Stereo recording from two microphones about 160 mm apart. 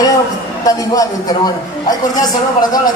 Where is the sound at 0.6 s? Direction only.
20° left (ahead or behind).